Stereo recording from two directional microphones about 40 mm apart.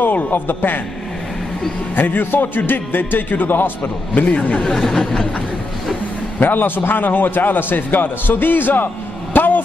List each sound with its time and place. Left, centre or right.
0.0 s a man's voice: left
2.0 s a man's voice: left
4.1 s speech: left
4.6 s a sound: centre
6.4 s a man's voice: left